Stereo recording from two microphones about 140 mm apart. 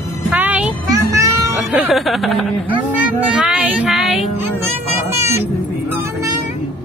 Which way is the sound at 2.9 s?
10° right (ahead or behind).